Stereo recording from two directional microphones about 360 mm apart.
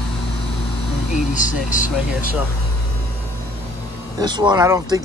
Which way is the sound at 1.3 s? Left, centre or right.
Left.